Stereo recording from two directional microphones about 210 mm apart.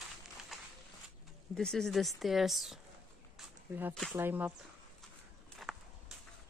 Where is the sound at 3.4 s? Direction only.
10° right (ahead or behind).